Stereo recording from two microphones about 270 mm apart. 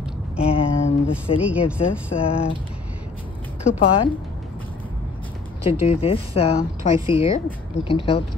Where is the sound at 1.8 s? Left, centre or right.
Left.